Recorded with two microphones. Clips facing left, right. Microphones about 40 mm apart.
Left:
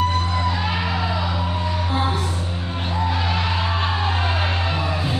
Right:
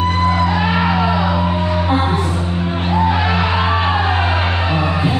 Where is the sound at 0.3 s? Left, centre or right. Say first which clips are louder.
Right 7 dB; right.